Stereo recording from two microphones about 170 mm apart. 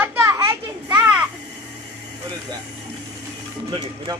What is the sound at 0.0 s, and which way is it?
Children playing, 15° right (ahead or behind).